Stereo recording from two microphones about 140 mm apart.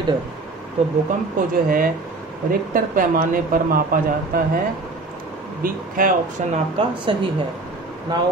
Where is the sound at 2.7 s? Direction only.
75° right (ahead or behind).